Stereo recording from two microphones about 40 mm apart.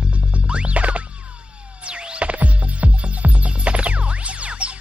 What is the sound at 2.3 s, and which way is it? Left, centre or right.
Music, right.